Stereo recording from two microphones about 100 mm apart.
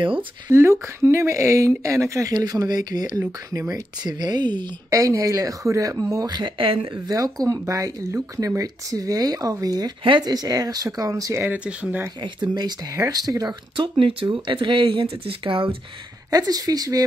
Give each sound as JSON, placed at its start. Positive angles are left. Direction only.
{"t": 0.5, "sound": "speech", "side_deg": -25}
{"t": 4.9, "sound": "speech", "side_deg": -35}
{"t": 6.3, "sound": "speech", "side_deg": -55}
{"t": 7.1, "sound": "speech", "side_deg": -35}
{"t": 11.4, "sound": "speech", "side_deg": -15}
{"t": 12.2, "sound": "speech", "side_deg": -45}
{"t": 12.9, "sound": "speech", "side_deg": -35}
{"t": 13.7, "sound": "speech", "side_deg": -55}
{"t": 16.3, "sound": "speech", "side_deg": -40}